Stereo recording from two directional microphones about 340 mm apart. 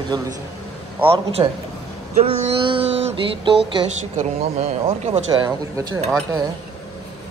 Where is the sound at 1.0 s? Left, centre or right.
Centre.